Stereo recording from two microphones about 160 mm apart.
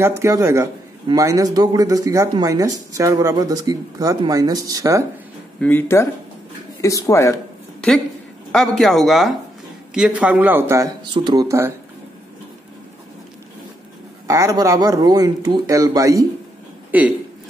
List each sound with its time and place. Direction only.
0.2 s a man's voice: 20° right (ahead or behind)
5.6 s speech: 10° left (ahead or behind)
8.5 s a man's voice: centre (ahead or behind); by 11.7 s 20° right (ahead or behind)
14.2 s a man's voice: 20° right (ahead or behind)
16.9 s a man's voice: 10° right (ahead or behind)